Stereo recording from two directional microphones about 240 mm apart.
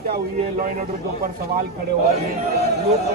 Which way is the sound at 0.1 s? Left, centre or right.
Right.